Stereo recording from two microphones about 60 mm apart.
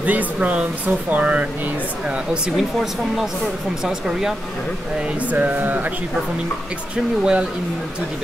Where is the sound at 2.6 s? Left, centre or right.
Centre.